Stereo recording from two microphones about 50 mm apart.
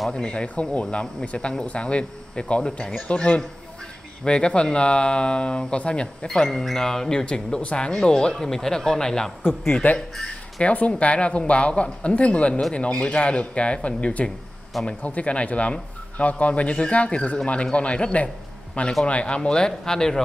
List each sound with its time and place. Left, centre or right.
0.1 s speech: centre
9.8 s speech: left
10.9 s speech: left